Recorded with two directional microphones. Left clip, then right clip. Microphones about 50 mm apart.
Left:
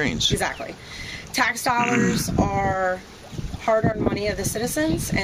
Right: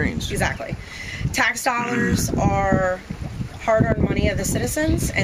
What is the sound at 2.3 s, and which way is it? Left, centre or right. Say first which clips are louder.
Speech: right 3 dB; centre.